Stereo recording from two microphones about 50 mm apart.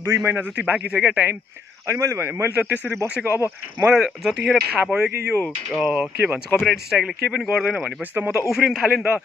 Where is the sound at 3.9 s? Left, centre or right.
Centre.